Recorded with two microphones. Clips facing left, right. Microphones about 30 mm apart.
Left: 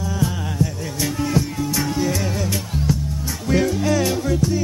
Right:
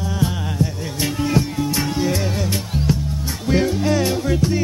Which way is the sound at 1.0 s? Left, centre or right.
Centre.